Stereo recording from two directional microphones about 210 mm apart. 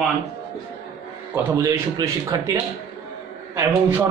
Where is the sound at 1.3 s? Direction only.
15° right (ahead or behind).